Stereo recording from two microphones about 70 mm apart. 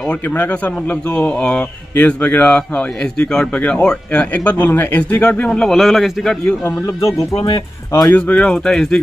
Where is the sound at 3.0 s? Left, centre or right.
Centre; by 5.2 s left.